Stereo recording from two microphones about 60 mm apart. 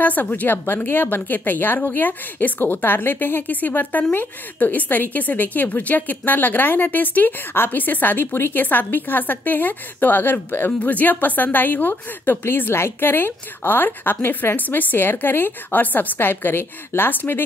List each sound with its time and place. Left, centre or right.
0.0 s a woman's voice: left